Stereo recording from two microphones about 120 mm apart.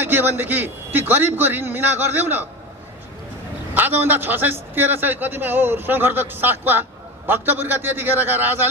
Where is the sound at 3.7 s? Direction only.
15° right (ahead or behind).